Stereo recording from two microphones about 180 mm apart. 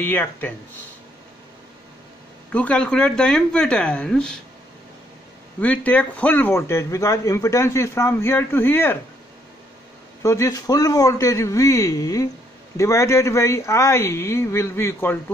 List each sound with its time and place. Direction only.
0.0 s a man's voice: 10° left (ahead or behind)
2.5 s speech: 5° left (ahead or behind)
5.6 s a man's voice: 10° left (ahead or behind)
10.2 s a man's voice: 15° left (ahead or behind)